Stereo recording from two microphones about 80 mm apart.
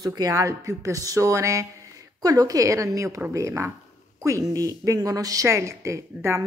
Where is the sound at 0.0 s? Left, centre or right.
Right.